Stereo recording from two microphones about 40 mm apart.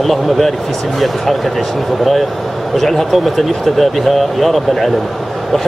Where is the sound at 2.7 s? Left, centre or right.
Centre.